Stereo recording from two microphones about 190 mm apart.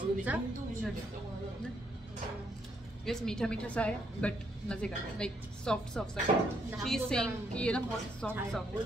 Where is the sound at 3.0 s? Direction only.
5° left (ahead or behind).